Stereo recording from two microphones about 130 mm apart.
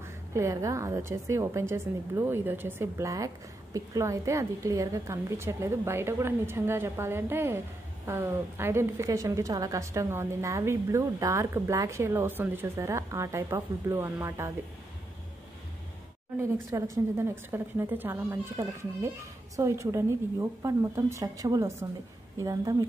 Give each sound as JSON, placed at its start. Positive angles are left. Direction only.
{"t": 0.0, "sound": "a woman's voice", "side_deg": -25}
{"t": 16.7, "sound": "a woman's voice", "side_deg": -25}